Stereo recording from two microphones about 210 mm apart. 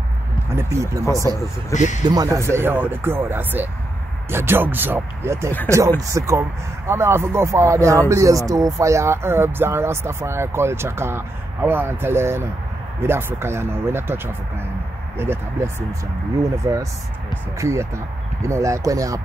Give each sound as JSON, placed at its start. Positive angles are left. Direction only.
{"t": 0.5, "sound": "speech", "side_deg": -15}
{"t": 1.0, "sound": "speech", "side_deg": 15}
{"t": 1.7, "sound": "speech", "side_deg": 35}
{"t": 2.0, "sound": "speech", "side_deg": -15}
{"t": 17.6, "sound": "speech", "side_deg": -15}